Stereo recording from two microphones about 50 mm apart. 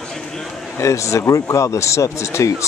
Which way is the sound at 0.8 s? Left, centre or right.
Left.